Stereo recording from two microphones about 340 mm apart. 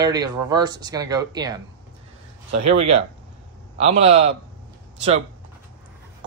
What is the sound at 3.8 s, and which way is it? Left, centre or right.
Speech, centre.